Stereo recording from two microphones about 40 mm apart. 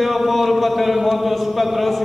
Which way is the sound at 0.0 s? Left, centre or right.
Centre.